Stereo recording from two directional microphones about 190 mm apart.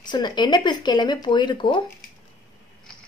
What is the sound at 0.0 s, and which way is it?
A woman's voice, 25° left (ahead or behind).